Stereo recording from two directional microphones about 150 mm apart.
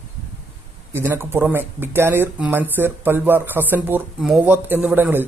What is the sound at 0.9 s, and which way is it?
A man's voice, 15° right (ahead or behind).